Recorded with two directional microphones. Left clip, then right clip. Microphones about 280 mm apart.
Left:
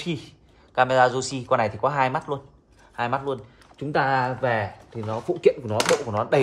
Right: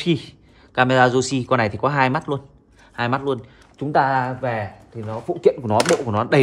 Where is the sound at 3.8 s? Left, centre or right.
Centre.